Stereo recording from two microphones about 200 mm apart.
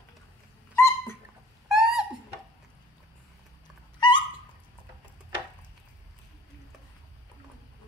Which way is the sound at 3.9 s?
25° left (ahead or behind).